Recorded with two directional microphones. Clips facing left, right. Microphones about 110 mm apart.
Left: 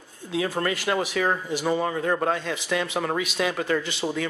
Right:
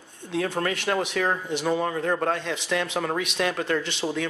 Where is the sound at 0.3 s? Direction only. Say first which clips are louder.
Even; centre (ahead or behind).